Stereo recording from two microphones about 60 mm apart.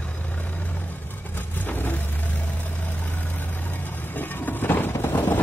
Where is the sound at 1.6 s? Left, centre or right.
Left.